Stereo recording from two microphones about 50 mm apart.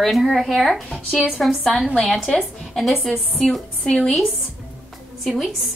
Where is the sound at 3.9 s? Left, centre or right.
Centre.